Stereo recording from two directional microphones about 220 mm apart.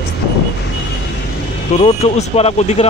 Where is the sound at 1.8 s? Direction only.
30° left (ahead or behind).